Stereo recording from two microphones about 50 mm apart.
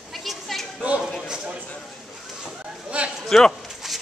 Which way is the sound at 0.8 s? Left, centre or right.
Right.